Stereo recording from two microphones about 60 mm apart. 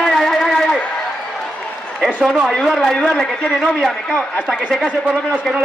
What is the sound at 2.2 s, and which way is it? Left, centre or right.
Speech, centre.